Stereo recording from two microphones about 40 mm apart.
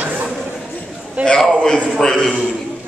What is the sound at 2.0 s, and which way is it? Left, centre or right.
Speech, centre.